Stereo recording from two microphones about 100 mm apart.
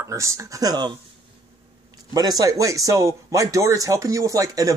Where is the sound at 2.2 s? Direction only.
40° right (ahead or behind).